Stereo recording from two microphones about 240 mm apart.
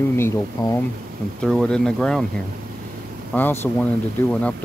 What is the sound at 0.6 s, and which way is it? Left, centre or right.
Speech, centre.